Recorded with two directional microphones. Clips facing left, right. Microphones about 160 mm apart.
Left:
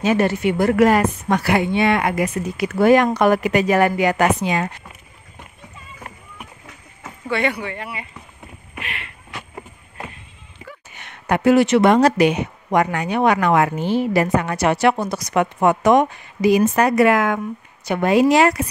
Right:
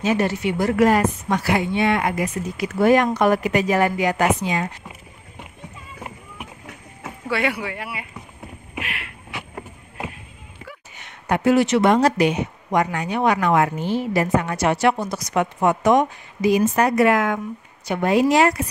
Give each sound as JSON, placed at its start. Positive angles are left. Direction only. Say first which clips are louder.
{"t": 0.0, "sound": "speech", "louder": "left 3 dB", "side_deg": 55}
{"t": 6.0, "sound": "rowboat", "louder": "right 2 dB", "side_deg": -15}
{"t": 7.0, "sound": "speech", "louder": "left 2 dB", "side_deg": -5}
{"t": 8.7, "sound": "vehicle", "louder": "right 1 dB", "side_deg": -5}
{"t": 11.0, "sound": "speech", "louder": "left 2 dB", "side_deg": 65}
{"t": 17.8, "sound": "a woman's voice", "louder": "left 3 dB", "side_deg": 75}